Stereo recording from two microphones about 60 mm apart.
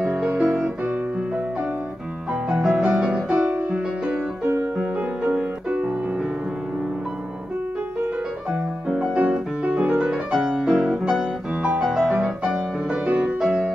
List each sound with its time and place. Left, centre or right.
0.0 s music: centre
2.5 s music: centre
8.9 s piano: centre
9.2 s music: centre
10.9 s piano: centre
11.9 s music: centre